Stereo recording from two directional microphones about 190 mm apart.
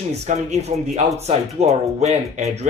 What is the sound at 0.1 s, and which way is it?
Speech, 35° right (ahead or behind).